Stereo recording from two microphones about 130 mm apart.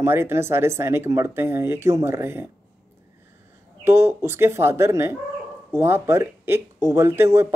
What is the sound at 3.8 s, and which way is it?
Speech, 20° right (ahead or behind).